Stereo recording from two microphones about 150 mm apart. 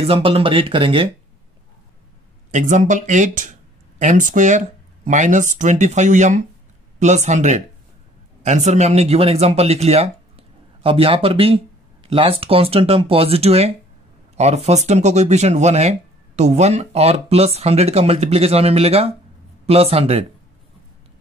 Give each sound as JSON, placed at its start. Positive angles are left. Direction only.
{"t": 0.0, "sound": "speech", "side_deg": -40}
{"t": 2.5, "sound": "speech", "side_deg": -60}